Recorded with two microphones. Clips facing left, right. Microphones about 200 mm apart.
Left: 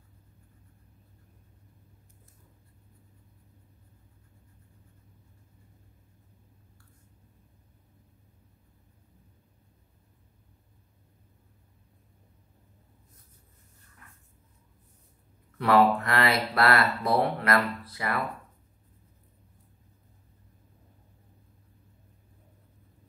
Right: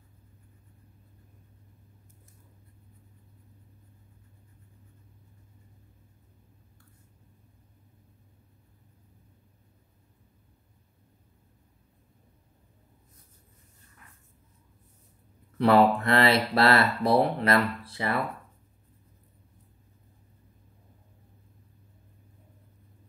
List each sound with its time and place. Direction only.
15.5 s speech: 30° right (ahead or behind)